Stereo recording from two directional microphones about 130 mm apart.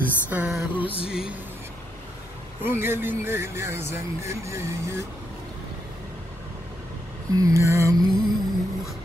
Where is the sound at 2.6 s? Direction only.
15° right (ahead or behind).